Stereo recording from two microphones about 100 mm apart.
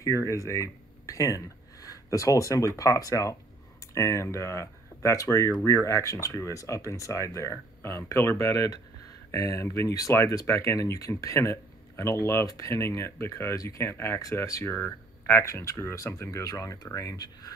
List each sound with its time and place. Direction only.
0.0 s speech: 30° left (ahead or behind)